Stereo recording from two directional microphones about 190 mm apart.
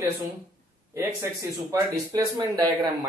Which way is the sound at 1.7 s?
20° right (ahead or behind).